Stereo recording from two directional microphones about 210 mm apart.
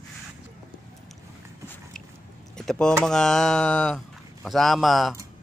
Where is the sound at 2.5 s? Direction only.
Centre (ahead or behind).